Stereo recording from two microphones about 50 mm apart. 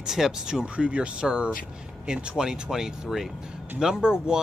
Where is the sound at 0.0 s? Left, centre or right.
Centre.